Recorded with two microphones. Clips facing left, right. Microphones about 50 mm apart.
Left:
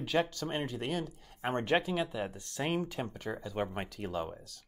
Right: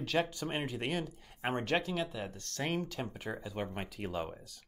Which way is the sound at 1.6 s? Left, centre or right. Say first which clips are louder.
Left 5 dB; centre.